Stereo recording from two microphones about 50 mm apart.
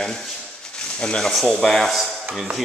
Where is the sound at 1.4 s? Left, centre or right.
Centre.